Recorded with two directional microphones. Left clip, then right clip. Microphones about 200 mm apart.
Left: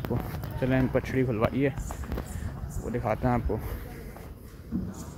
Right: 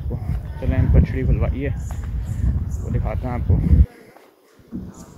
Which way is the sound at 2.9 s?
20° left (ahead or behind).